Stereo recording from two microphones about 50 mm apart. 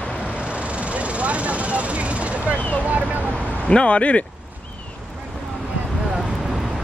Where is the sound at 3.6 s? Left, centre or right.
Left.